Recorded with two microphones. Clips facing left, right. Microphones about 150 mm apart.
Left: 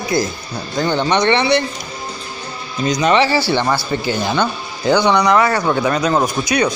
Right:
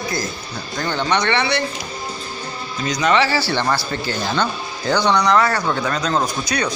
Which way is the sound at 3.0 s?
20° left (ahead or behind).